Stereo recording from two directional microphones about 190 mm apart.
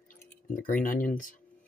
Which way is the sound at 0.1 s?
45° left (ahead or behind).